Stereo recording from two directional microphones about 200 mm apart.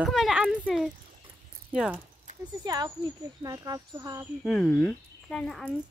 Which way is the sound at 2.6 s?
20° right (ahead or behind).